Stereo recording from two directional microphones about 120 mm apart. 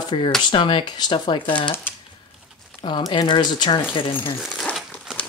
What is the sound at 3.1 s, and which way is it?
Speech, 40° left (ahead or behind).